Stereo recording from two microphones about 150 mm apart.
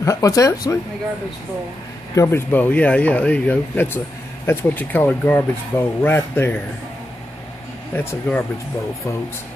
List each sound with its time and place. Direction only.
0.0 s speech: 20° left (ahead or behind)
2.1 s speech: 15° left (ahead or behind)
7.9 s speech: 15° left (ahead or behind)